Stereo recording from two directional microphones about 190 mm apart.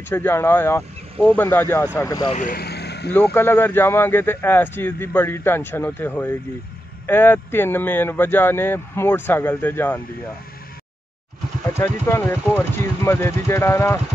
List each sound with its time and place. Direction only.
0.1 s speech: 15° left (ahead or behind)
2.3 s vehicle: 50° left (ahead or behind)
3.1 s speech: 10° left (ahead or behind)
11.6 s speech: 15° left (ahead or behind)